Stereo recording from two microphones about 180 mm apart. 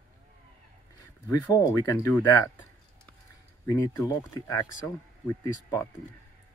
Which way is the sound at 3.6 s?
15° left (ahead or behind).